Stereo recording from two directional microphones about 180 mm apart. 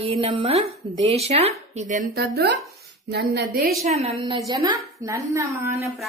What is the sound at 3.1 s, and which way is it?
Speech, 65° right (ahead or behind).